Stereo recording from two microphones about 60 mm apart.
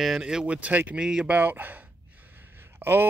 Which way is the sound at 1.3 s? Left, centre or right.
Right.